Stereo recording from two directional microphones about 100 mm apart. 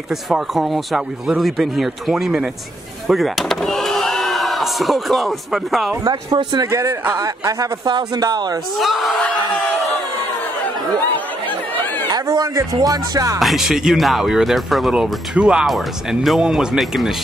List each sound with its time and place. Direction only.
0.1 s speech: centre (ahead or behind)
6.3 s speech: 40° right (ahead or behind)
8.7 s speech: centre (ahead or behind)
11.4 s chatter: 15° left (ahead or behind)
12.1 s speech: 40° right (ahead or behind)
13.4 s speech: centre (ahead or behind)